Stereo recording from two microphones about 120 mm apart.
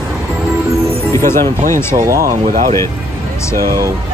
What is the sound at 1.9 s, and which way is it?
Speech, 25° right (ahead or behind).